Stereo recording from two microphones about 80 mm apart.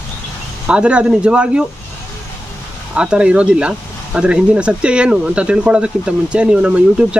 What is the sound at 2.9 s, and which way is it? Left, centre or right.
Speech, centre.